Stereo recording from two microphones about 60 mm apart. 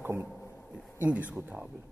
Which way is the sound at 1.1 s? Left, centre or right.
Right.